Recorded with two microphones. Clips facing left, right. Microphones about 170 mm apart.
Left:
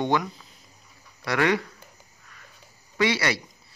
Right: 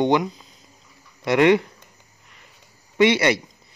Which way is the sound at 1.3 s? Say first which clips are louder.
Right 7 dB; 25° right (ahead or behind).